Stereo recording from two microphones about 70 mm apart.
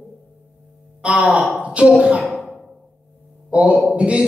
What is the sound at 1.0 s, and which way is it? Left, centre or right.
A man's voice, centre.